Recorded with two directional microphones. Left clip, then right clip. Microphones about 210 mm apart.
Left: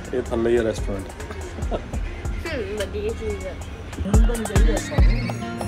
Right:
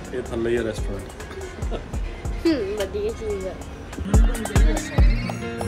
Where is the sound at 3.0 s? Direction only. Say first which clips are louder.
Right 1 dB; 45° right (ahead or behind).